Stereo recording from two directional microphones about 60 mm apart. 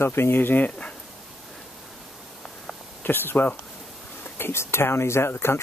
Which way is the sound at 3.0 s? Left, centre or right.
Left.